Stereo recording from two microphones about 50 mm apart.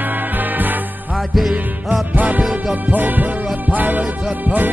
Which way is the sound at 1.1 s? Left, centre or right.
Centre.